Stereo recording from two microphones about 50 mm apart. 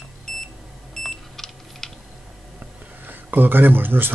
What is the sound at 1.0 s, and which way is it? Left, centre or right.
Beep, centre.